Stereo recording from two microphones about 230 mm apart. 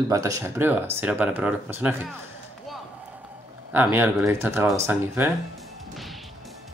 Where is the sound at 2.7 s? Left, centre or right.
Centre.